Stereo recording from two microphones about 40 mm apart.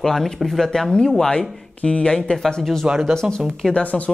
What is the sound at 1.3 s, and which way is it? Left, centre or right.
Speech, left.